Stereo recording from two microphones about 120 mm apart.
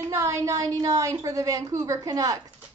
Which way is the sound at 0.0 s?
25° right (ahead or behind).